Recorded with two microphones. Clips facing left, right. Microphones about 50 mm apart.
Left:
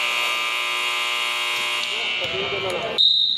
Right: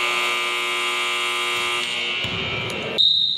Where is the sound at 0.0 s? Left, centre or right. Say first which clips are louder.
Right 1 dB; centre.